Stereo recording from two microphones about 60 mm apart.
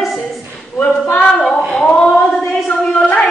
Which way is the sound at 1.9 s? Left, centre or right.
Centre.